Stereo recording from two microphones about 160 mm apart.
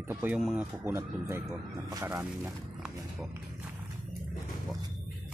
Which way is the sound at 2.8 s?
5° right (ahead or behind).